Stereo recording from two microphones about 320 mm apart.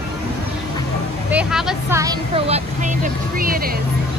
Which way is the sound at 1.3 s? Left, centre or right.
Centre.